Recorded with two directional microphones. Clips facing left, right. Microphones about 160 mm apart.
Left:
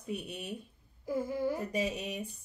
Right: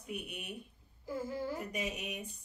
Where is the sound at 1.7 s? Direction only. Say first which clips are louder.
Left 5 dB; 30° left (ahead or behind).